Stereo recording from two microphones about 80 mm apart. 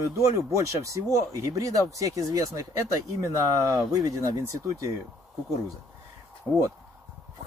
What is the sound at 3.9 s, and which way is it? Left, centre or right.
Speech, right.